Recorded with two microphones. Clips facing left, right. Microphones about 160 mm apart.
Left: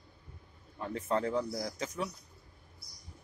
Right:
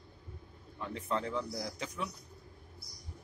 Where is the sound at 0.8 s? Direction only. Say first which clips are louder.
Left 4 dB; 45° left (ahead or behind).